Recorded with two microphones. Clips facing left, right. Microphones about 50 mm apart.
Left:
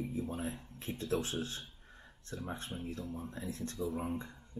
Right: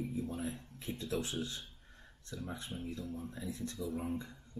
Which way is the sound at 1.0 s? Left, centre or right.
Left.